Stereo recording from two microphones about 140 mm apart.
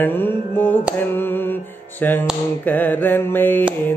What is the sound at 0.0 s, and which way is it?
Mantra, 15° left (ahead or behind).